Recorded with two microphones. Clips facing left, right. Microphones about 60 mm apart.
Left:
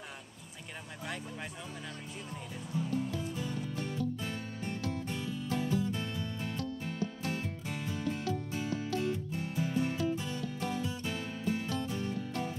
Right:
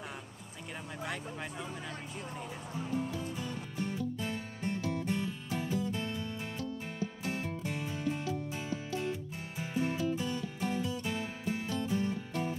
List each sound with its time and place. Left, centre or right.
1.0 s speech: centre
4.6 s music: centre
7.8 s music: centre
11.1 s music: centre